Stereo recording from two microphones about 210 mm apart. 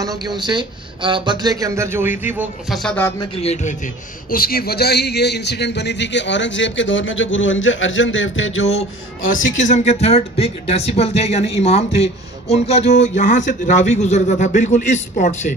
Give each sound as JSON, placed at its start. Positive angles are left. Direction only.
{"t": 0.2, "sound": "speech", "side_deg": -20}
{"t": 3.2, "sound": "a man's voice", "side_deg": 30}
{"t": 9.3, "sound": "speech", "side_deg": 35}